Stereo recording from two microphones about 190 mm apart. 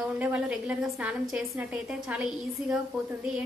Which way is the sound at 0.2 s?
5° right (ahead or behind).